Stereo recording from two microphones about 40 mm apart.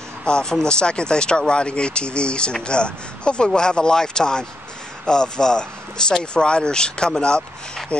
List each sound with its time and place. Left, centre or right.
0.2 s speech: left